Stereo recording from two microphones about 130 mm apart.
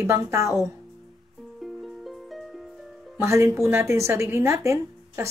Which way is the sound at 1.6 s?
Centre (ahead or behind).